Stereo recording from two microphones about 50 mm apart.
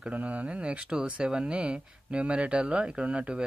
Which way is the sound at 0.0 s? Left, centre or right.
Right.